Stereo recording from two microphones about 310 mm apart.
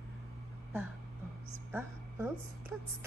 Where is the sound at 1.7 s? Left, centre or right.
Centre.